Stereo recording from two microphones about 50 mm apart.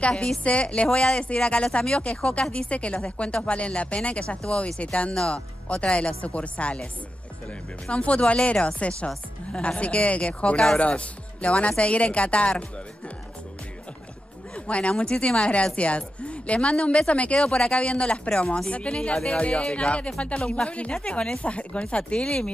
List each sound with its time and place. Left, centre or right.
0.0 s a woman's voice: left
14.5 s a woman's voice: left